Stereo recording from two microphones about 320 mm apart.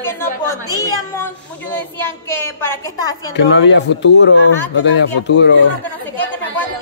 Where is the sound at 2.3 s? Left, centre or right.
Centre.